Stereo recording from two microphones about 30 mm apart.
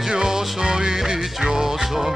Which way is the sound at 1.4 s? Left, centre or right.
Centre.